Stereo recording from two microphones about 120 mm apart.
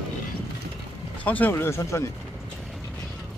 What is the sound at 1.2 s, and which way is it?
Speech, 15° left (ahead or behind).